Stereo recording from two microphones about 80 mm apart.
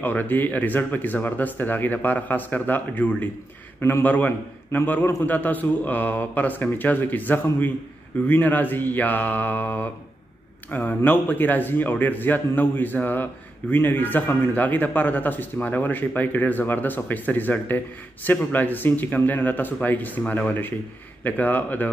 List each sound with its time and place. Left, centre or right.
0.0 s a man's voice: left